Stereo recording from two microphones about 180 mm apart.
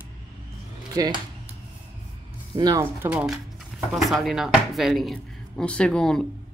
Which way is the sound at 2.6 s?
20° right (ahead or behind).